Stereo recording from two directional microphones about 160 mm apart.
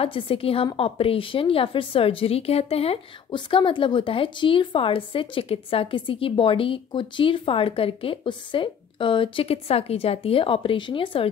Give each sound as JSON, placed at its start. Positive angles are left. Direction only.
{"t": 0.0, "sound": "a woman's voice", "side_deg": 35}